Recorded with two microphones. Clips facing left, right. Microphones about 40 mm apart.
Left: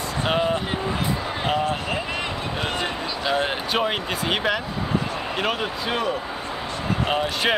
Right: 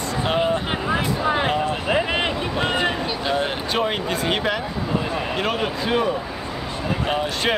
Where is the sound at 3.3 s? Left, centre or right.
Centre.